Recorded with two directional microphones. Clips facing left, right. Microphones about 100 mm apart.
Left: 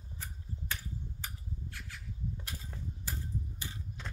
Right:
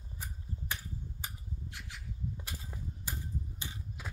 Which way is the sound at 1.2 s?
20° right (ahead or behind).